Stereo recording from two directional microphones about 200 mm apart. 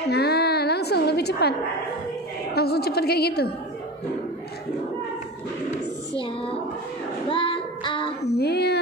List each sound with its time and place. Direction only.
0.1 s a sound: 55° left (ahead or behind)
2.5 s a woman's voice: 50° left (ahead or behind)
6.1 s speech: 30° left (ahead or behind)
7.2 s child singing: 25° left (ahead or behind)
8.2 s child singing: 55° left (ahead or behind)